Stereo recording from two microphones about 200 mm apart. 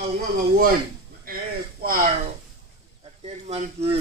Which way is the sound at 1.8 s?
45° right (ahead or behind).